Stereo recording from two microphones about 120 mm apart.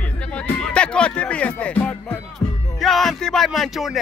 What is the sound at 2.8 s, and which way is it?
Music, centre (ahead or behind).